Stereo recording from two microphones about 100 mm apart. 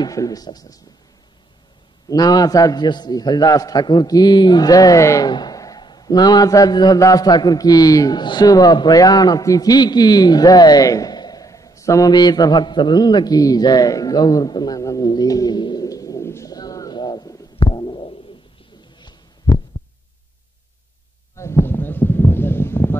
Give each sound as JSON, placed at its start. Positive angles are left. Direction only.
{"t": 0.0, "sound": "a man's voice", "side_deg": 35}
{"t": 2.0, "sound": "a man's voice", "side_deg": 40}
{"t": 5.3, "sound": "a man's voice", "side_deg": 40}
{"t": 12.1, "sound": "a man's voice", "side_deg": 45}
{"t": 17.6, "sound": "stomach rumble", "side_deg": 50}
{"t": 21.4, "sound": "a sound", "side_deg": 25}